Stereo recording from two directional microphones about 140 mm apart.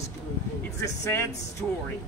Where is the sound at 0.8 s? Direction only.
20° left (ahead or behind).